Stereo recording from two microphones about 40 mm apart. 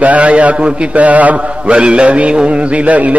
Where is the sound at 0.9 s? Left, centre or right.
Right.